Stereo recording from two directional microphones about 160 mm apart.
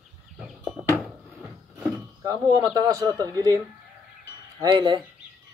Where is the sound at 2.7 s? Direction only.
25° right (ahead or behind).